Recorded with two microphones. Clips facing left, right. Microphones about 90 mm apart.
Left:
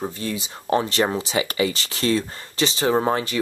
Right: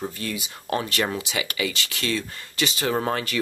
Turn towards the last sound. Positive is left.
turn(degrees=25)  # may be behind; listen again after turning